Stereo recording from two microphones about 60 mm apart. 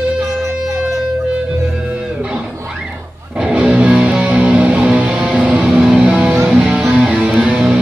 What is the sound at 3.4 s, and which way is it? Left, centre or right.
Music, centre.